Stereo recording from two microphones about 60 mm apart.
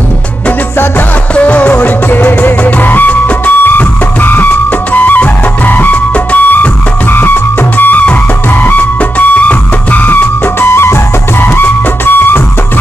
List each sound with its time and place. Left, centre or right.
1.3 s music: left